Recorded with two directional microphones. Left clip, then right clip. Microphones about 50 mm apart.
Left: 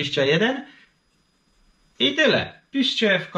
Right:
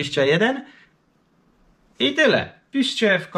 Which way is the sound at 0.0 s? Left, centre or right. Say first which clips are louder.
Right 1 dB; right.